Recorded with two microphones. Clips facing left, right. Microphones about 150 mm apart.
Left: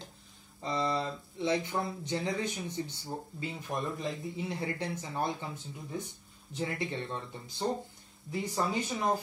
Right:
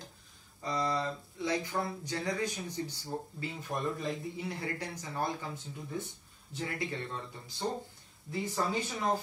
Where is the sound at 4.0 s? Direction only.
20° left (ahead or behind).